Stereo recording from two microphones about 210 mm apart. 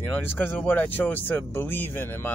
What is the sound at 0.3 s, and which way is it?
Speech, 10° left (ahead or behind).